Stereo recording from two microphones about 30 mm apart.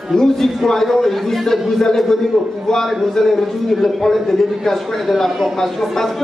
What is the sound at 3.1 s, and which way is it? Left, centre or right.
A man's voice, centre.